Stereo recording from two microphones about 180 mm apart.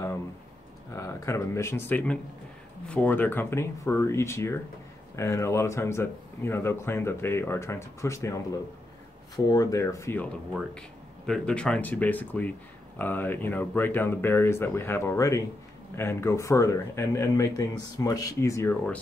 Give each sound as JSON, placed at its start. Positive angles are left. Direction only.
{"t": 0.9, "sound": "speech", "side_deg": 15}
{"t": 9.5, "sound": "speech", "side_deg": 20}